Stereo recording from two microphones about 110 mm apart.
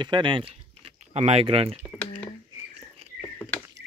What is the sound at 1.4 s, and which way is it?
Speech, 60° right (ahead or behind).